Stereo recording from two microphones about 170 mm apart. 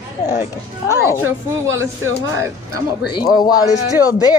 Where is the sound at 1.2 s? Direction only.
15° right (ahead or behind).